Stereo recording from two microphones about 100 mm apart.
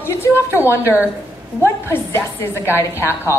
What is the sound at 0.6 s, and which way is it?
A woman's voice, 25° left (ahead or behind).